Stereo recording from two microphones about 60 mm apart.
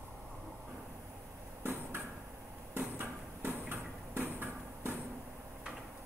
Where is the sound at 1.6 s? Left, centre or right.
Right.